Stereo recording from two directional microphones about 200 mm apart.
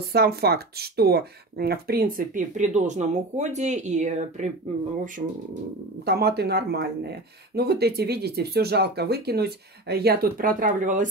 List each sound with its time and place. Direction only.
0.1 s speech: 50° right (ahead or behind); by 4.5 s 35° right (ahead or behind)
6.0 s speech: 55° right (ahead or behind)